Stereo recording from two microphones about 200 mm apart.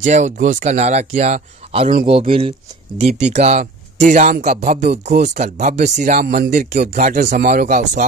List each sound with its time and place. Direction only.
0.0 s speech: 35° right (ahead or behind)
6.2 s speech: 55° right (ahead or behind)
7.0 s speech: 40° right (ahead or behind)
7.4 s speech: 50° right (ahead or behind)